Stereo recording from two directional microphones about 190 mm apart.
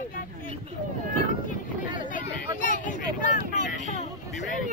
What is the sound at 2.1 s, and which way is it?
Vehicle, 45° left (ahead or behind).